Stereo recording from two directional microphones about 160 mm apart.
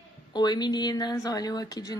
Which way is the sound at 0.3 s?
25° left (ahead or behind).